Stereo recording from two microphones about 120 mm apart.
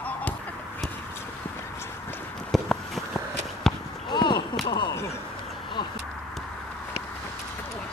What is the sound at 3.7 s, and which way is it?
Basketball bounce, 5° left (ahead or behind).